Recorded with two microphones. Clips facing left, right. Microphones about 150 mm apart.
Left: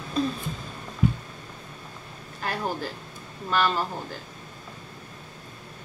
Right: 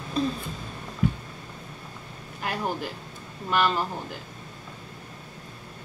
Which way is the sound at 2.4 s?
15° right (ahead or behind).